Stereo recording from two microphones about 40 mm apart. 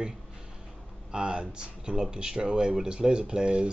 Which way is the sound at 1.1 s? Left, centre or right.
Right.